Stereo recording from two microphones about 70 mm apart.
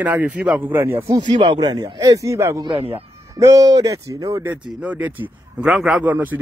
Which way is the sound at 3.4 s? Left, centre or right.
Right.